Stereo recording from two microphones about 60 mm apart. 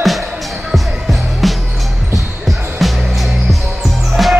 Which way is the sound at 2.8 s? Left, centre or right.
Centre.